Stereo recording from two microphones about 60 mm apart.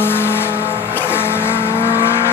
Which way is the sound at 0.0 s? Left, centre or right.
Left.